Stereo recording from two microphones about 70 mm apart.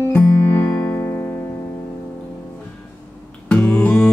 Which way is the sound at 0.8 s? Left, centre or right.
Left.